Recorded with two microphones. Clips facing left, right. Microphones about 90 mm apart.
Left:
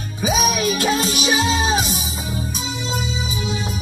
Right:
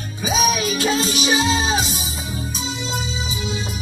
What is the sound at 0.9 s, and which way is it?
Music, 55° left (ahead or behind).